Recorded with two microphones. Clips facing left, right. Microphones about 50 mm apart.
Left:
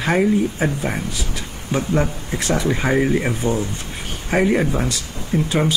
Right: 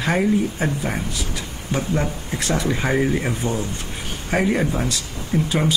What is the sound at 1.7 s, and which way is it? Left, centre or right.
Speech, centre.